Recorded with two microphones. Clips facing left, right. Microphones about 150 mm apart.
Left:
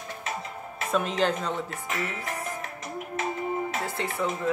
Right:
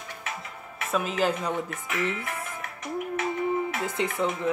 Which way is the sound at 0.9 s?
5° right (ahead or behind).